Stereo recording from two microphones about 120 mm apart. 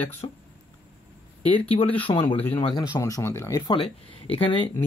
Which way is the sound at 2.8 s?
30° left (ahead or behind).